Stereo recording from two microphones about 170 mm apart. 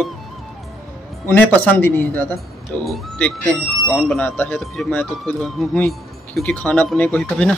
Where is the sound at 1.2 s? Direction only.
10° left (ahead or behind).